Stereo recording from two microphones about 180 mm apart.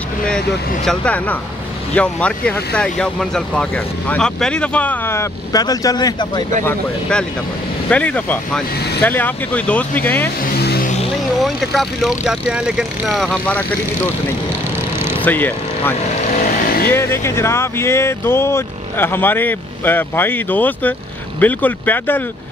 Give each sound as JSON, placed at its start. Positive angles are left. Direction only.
{"t": 0.8, "sound": "speech", "side_deg": 5}
{"t": 6.6, "sound": "speech", "side_deg": 10}
{"t": 10.4, "sound": "vehicle", "side_deg": 55}
{"t": 11.4, "sound": "speech", "side_deg": 0}
{"t": 15.2, "sound": "speech", "side_deg": 10}
{"t": 16.3, "sound": "vehicle", "side_deg": 55}
{"t": 16.9, "sound": "speech", "side_deg": 15}